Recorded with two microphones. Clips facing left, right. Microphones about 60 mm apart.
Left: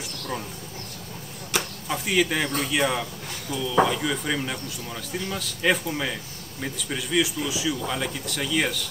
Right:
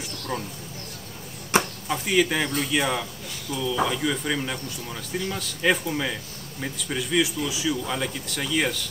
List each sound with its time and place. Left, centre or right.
0.3 s speech: centre
1.5 s chop: right
1.9 s speech: centre